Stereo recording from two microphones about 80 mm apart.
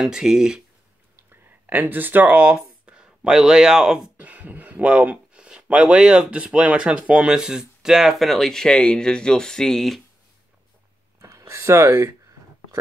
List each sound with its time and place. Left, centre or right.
0.0 s speech: centre
1.3 s speech: right
2.5 s speech: centre
11.1 s a sound: right